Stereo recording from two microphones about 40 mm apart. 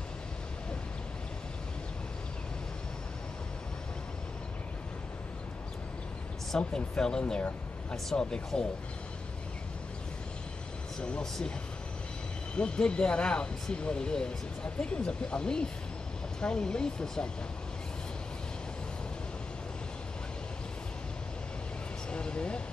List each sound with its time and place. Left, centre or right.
6.7 s speech: centre
8.1 s speech: left
8.5 s speech: centre
12.5 s speech: left
22.1 s a sound: left